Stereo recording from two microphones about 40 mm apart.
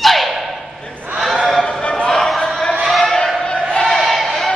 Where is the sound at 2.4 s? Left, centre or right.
Centre.